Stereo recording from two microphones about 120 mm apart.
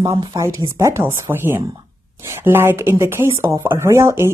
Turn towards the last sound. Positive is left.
turn(degrees=-25)  # may be behind; listen again after turning